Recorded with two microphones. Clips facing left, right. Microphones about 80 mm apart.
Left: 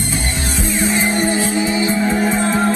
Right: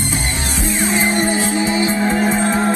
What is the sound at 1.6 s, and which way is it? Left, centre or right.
Music, centre.